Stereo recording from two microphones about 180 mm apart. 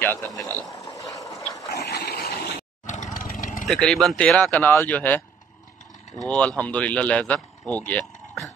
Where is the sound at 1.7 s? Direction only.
65° left (ahead or behind).